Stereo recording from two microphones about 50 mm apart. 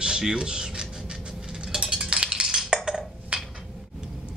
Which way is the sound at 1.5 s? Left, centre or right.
Centre.